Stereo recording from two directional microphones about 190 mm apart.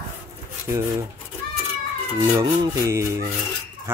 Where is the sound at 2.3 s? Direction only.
20° right (ahead or behind).